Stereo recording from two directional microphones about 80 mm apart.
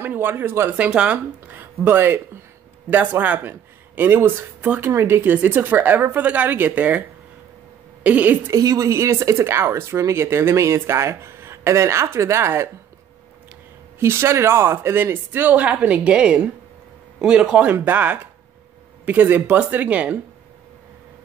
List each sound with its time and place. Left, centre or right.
0.0 s speech: right
0.7 s speech: centre
1.6 s a woman's voice: right
8.5 s speech: right
13.9 s speech: right